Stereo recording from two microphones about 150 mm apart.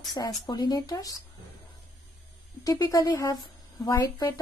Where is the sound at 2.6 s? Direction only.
25° left (ahead or behind).